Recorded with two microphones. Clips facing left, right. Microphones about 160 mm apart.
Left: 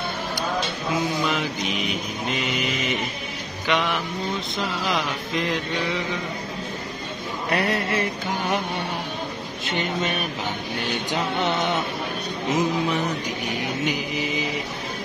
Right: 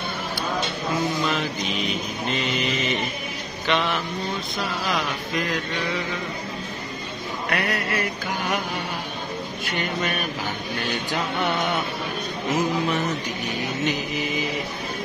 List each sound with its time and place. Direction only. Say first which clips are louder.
1.9 s a sound: even; 10° left (ahead or behind)
4.8 s mantra: left 1 dB; 20° left (ahead or behind)
7.4 s mantra: left 3 dB; 30° left (ahead or behind)
9.7 s mantra: left 2 dB; 20° left (ahead or behind)
12.4 s mantra: left 1 dB; 20° left (ahead or behind)
13.8 s a sound: even; 15° left (ahead or behind)